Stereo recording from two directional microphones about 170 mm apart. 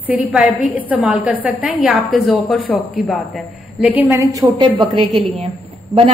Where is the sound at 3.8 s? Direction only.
10° right (ahead or behind).